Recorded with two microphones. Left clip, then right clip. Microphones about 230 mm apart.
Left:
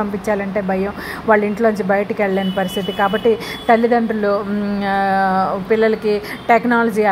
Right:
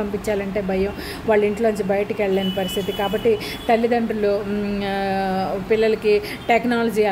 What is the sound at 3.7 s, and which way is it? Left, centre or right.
Speech, centre.